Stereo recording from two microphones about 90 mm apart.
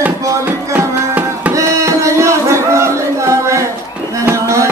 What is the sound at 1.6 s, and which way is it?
Music, 35° right (ahead or behind).